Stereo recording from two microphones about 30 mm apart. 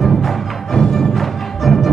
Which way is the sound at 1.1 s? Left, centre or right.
Centre.